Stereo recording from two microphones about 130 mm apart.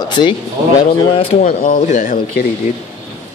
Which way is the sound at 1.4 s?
85° left.